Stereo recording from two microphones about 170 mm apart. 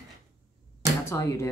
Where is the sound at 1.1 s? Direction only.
15° left (ahead or behind).